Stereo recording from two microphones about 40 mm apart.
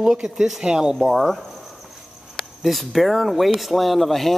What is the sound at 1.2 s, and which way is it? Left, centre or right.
A man's voice, centre.